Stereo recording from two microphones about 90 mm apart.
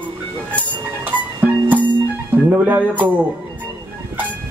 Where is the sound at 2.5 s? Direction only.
20° right (ahead or behind).